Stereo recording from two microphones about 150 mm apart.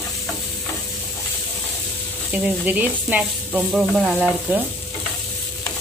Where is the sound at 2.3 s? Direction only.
10° right (ahead or behind).